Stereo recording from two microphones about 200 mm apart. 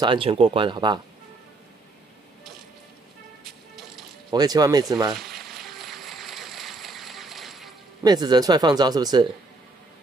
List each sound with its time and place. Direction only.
0.0 s speech: 25° right (ahead or behind)
4.3 s speech: 20° right (ahead or behind)
5.1 s a sound: centre (ahead or behind)
8.0 s speech: 20° right (ahead or behind)